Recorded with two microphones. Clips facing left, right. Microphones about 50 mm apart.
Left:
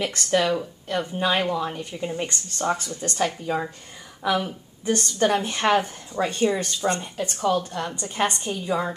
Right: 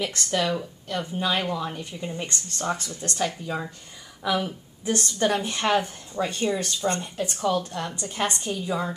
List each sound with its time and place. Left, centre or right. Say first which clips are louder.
0.3 s a woman's voice: left 5 dB; centre
3.2 s a woman's voice: left 4 dB; centre
7.0 s a woman's voice: left 1 dB; centre